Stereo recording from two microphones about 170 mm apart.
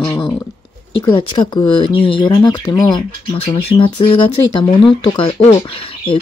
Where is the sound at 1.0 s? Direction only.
25° left (ahead or behind).